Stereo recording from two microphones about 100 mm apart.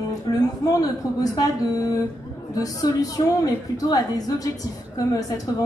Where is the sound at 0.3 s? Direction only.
40° left (ahead or behind).